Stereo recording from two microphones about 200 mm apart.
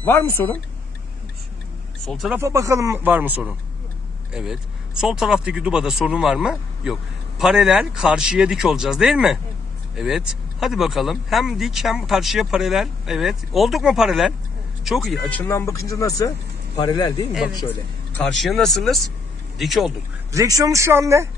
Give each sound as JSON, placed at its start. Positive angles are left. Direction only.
{"t": 0.0, "sound": "speech", "side_deg": 10}
{"t": 2.0, "sound": "speech", "side_deg": 0}
{"t": 2.4, "sound": "speech", "side_deg": -15}
{"t": 17.6, "sound": "speech", "side_deg": 5}
{"t": 20.3, "sound": "speech", "side_deg": -15}